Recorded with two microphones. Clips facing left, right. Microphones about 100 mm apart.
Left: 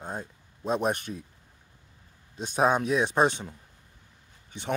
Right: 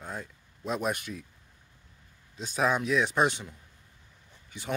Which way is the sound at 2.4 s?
40° left (ahead or behind).